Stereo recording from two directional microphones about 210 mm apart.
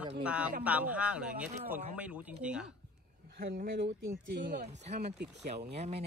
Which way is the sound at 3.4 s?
45° right (ahead or behind).